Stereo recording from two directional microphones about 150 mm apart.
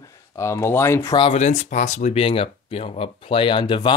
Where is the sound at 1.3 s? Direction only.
50° left (ahead or behind); by 3.9 s 30° left (ahead or behind).